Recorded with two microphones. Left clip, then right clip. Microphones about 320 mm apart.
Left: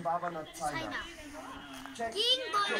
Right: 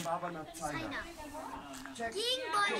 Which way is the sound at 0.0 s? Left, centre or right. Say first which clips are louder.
Left 4 dB; centre.